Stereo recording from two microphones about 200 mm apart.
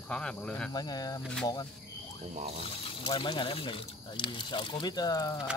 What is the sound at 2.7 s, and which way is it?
Speech, 25° left (ahead or behind).